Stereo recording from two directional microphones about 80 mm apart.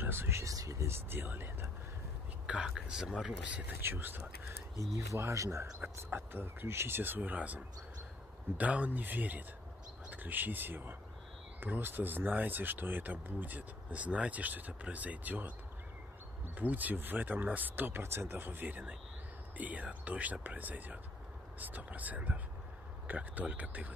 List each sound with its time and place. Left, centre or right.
0.0 s vehicle: right
0.6 s a sound: right
2.4 s whispering: centre
3.4 s speech: centre
4.7 s speech: right
5.8 s speech: right
16.5 s speech: right